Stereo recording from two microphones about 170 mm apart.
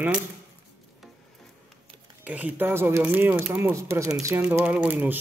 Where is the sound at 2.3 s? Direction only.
10° right (ahead or behind).